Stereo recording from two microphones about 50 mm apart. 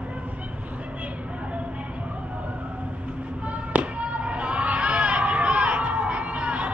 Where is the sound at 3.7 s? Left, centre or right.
Right.